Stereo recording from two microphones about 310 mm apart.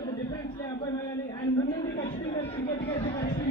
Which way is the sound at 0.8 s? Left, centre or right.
Centre.